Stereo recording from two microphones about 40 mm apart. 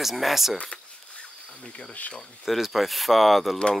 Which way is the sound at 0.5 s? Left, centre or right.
Left.